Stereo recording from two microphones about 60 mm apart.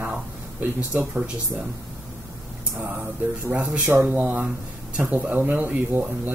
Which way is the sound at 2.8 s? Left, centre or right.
Centre.